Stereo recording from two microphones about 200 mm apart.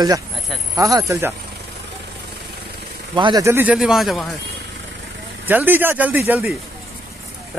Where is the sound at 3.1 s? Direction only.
25° right (ahead or behind).